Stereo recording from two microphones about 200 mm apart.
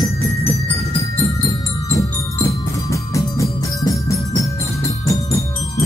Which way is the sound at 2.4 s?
15° left (ahead or behind).